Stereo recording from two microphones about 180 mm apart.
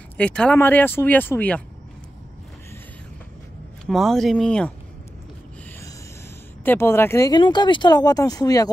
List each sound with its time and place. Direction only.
0.2 s speech: 5° left (ahead or behind)
3.8 s speech: centre (ahead or behind)
6.6 s speech: 10° left (ahead or behind)